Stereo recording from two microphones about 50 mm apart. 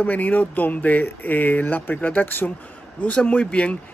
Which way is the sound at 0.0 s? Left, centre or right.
Left.